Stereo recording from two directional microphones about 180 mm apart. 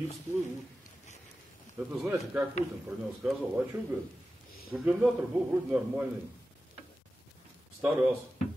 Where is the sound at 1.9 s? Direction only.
5° right (ahead or behind).